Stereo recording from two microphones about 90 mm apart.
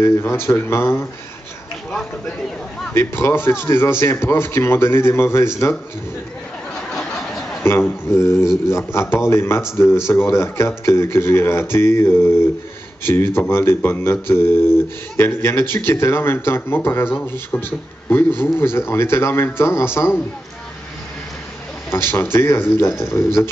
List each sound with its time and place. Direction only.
0.0 s speech: 30° left (ahead or behind)
2.9 s speech: 30° left (ahead or behind)
7.6 s speech: 25° left (ahead or behind)
21.9 s speech: 25° left (ahead or behind)